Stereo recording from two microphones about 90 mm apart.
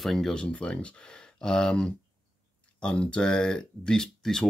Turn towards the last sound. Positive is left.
turn(degrees=5)  # may be behind; listen again after turning